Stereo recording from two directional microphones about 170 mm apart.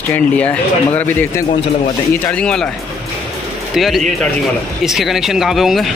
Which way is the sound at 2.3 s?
5° left (ahead or behind).